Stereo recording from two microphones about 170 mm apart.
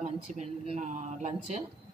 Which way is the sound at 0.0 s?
45° right (ahead or behind).